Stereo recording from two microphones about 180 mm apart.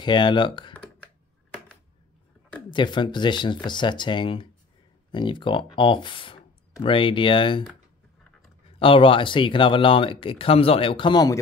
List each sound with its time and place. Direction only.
0.0 s speech: 25° left (ahead or behind)
2.7 s speech: 25° left (ahead or behind)
8.7 s speech: 30° left (ahead or behind)